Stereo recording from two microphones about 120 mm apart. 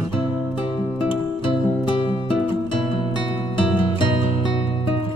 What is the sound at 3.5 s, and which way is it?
Music, 45° left (ahead or behind).